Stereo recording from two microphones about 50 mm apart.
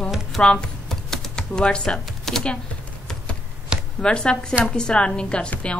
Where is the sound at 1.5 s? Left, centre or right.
Centre.